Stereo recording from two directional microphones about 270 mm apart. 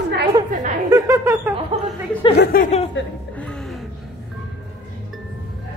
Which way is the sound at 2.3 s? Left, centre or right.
Left.